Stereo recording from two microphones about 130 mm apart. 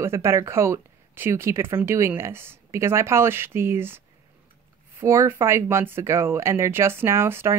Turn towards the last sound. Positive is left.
turn(degrees=-20)  # may be behind; listen again after turning